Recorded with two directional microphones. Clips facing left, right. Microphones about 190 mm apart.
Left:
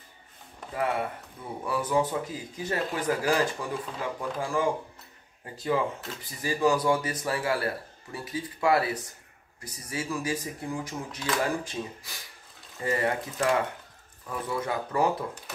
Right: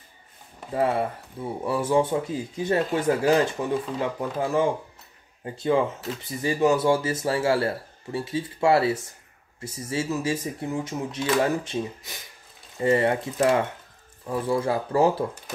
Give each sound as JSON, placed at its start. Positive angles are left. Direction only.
{"t": 0.7, "sound": "speech", "side_deg": -30}